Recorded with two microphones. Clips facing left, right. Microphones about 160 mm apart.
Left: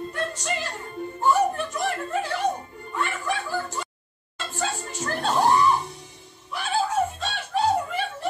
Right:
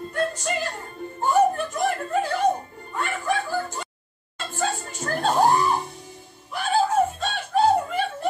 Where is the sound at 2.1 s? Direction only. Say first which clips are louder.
Right 3 dB; 50° right (ahead or behind).